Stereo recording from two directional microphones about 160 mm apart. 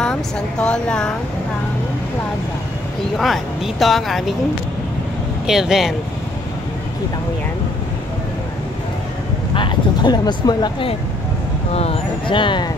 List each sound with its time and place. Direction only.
0.0 s speech: 5° left (ahead or behind)
3.2 s speech: centre (ahead or behind)
5.5 s speech: 5° right (ahead or behind)
9.5 s speech: 30° left (ahead or behind)